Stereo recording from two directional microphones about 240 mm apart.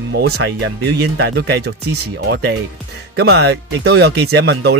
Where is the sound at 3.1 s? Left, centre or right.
Right.